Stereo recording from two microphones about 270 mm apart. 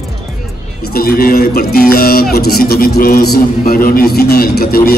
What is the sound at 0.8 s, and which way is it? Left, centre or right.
Speech, left.